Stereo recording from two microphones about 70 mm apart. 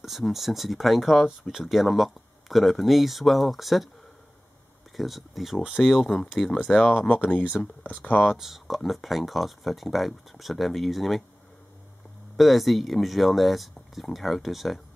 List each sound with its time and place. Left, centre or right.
0.0 s speech: centre
4.9 s speech: centre
7.2 s speech: centre
8.3 s speech: centre
12.4 s speech: centre